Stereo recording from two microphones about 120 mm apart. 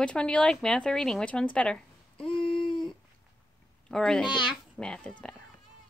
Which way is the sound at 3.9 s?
5° left (ahead or behind).